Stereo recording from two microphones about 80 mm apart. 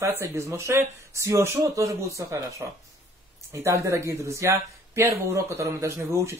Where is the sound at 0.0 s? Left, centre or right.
Right.